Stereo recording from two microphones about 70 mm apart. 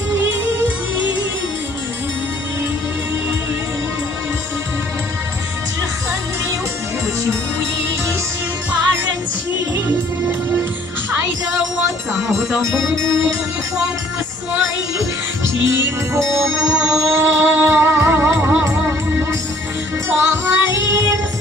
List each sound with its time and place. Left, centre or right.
9.8 s music: right
12.3 s music: right
15.0 s music: right
16.7 s music: centre
17.1 s music: right
20.1 s music: right